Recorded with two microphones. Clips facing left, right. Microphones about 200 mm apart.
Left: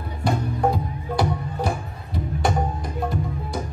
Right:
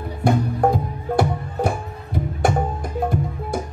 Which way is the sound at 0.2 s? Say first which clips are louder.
Right 4 dB; 50° right (ahead or behind).